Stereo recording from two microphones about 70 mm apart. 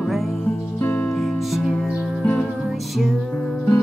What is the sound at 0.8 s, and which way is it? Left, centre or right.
Music, left.